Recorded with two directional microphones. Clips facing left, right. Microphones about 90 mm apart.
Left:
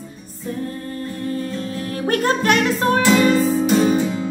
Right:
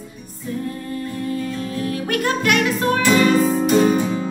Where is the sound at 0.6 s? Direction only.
40° left (ahead or behind).